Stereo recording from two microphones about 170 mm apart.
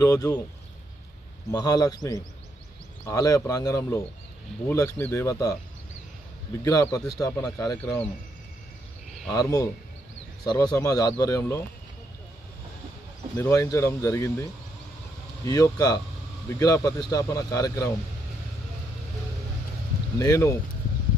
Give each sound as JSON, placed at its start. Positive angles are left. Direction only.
{"t": 0.0, "sound": "speech", "side_deg": 20}
{"t": 1.5, "sound": "speech", "side_deg": 25}
{"t": 3.1, "sound": "speech", "side_deg": 20}
{"t": 6.6, "sound": "speech", "side_deg": 20}
{"t": 9.3, "sound": "speech", "side_deg": 20}
{"t": 13.4, "sound": "speech", "side_deg": 15}
{"t": 20.2, "sound": "speech", "side_deg": 15}